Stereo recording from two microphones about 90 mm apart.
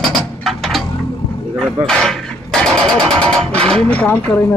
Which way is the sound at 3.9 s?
15° left (ahead or behind).